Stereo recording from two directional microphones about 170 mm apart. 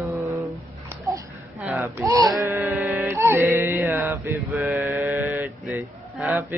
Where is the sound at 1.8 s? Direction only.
20° right (ahead or behind).